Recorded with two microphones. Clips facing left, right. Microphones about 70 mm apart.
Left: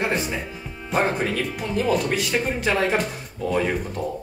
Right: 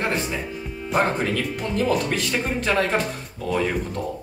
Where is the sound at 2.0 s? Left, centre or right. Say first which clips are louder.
Left 1 dB; centre.